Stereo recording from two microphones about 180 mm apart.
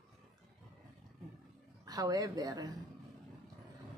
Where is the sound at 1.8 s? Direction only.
20° right (ahead or behind).